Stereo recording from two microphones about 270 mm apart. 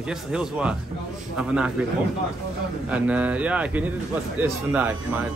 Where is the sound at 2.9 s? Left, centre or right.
Centre.